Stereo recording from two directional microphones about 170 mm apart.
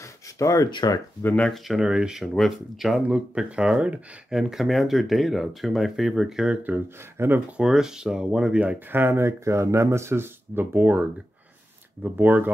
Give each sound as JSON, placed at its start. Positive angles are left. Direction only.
{"t": 0.0, "sound": "speech", "side_deg": 20}
{"t": 1.2, "sound": "speech", "side_deg": 5}